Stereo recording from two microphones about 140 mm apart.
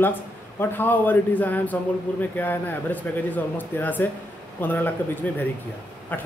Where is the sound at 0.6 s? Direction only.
15° left (ahead or behind).